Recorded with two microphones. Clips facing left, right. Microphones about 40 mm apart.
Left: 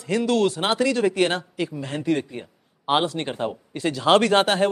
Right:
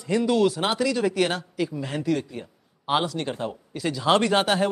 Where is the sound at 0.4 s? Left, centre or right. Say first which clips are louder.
Left 1 dB; left.